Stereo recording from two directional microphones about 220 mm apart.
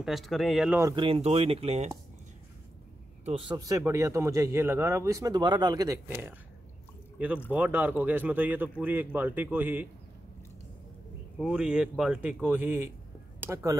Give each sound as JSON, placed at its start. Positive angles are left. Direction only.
{"t": 0.0, "sound": "speech", "side_deg": 0}
{"t": 0.7, "sound": "speech", "side_deg": -20}
{"t": 3.3, "sound": "a man's voice", "side_deg": -25}
{"t": 7.5, "sound": "a man's voice", "side_deg": -10}
{"t": 11.3, "sound": "a man's voice", "side_deg": -5}